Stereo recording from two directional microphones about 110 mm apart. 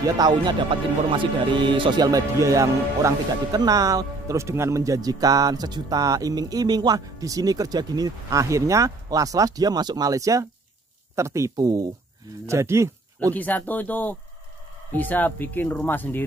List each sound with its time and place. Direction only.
0.0 s speech: 40° right (ahead or behind)
13.3 s speech: 15° left (ahead or behind)